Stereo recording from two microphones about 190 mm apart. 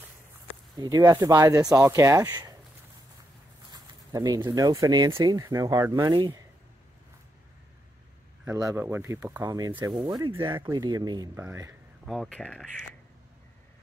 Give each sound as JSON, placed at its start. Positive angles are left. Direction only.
{"t": 0.5, "sound": "speech", "side_deg": -20}
{"t": 3.7, "sound": "speech", "side_deg": -20}
{"t": 8.5, "sound": "speech", "side_deg": -15}
{"t": 12.1, "sound": "speech", "side_deg": 0}